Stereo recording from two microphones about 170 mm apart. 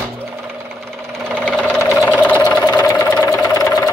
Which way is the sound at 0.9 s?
5° left (ahead or behind).